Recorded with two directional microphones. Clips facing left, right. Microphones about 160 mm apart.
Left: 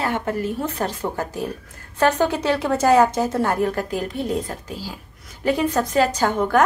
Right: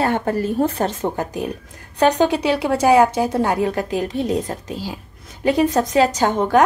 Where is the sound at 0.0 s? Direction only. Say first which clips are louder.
Right 4 dB; 30° right (ahead or behind).